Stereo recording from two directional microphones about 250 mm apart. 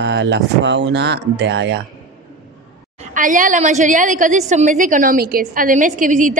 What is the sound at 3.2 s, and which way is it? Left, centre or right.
A woman's voice, right.